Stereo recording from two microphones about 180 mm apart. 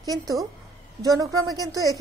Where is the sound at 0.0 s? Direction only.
20° right (ahead or behind).